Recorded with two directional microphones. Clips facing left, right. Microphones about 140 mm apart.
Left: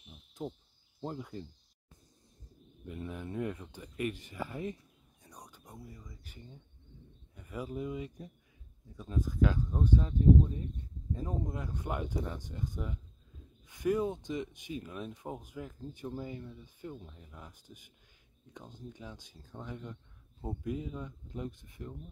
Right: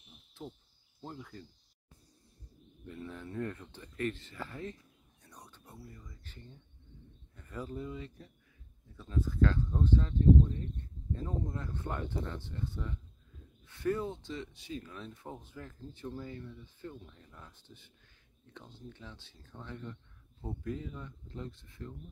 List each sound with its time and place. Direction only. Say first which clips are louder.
0.3 s cricket: left 6 dB; 20° left (ahead or behind)
1.0 s speech: left 6 dB; 20° left (ahead or behind)
3.0 s speech: left 2 dB; 15° left (ahead or behind)